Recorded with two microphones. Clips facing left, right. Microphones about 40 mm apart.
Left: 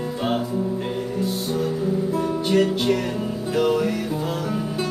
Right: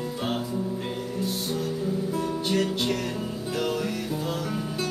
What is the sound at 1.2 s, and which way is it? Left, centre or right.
Music, centre.